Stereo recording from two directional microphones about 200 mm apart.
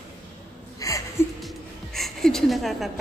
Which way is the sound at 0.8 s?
15° left (ahead or behind).